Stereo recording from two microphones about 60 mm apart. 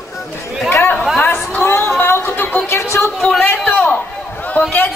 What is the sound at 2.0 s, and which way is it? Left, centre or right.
Music, left.